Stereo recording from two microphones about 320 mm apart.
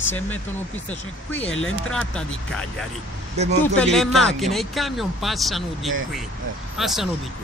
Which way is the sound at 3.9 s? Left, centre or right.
Centre.